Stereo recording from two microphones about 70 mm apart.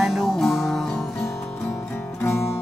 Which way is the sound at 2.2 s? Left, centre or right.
Left.